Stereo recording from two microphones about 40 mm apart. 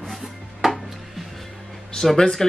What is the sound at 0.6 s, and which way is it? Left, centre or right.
Music, centre.